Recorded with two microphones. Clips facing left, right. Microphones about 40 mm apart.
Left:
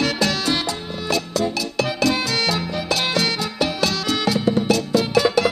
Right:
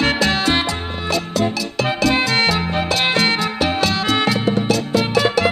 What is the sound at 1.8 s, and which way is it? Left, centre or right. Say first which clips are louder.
Music: right 4 dB; right.